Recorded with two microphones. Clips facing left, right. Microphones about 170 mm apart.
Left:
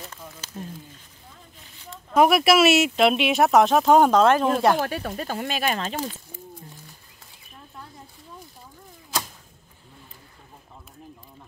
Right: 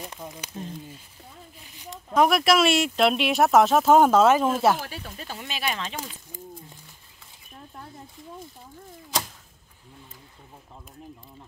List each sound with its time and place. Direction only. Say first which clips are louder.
0.0 s a sound: right 3 dB; 15° right (ahead or behind)
2.1 s speech: left 3 dB; 5° left (ahead or behind)
4.7 s speech: left 10 dB; 65° left (ahead or behind); by 6.1 s 40° left (ahead or behind)